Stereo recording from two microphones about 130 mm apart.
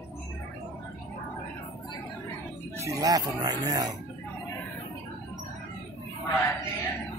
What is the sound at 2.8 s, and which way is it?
Speech, 25° right (ahead or behind).